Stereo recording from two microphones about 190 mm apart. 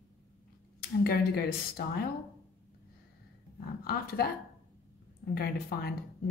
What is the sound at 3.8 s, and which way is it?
Speech, 55° left (ahead or behind).